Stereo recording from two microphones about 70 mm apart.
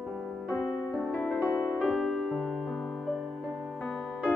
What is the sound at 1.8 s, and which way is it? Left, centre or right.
Music, centre.